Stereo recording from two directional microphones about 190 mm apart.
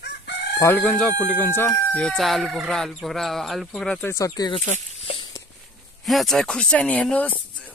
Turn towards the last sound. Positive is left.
turn(degrees=5)  # may be behind; listen again after turning